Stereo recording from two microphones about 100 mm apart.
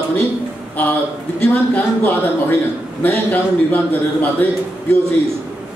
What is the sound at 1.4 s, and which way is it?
A man's voice, 20° left (ahead or behind).